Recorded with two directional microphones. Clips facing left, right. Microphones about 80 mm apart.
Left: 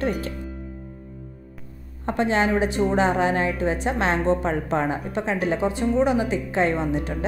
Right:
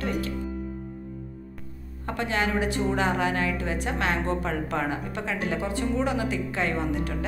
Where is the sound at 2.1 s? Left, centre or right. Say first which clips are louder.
Left 6 dB; left.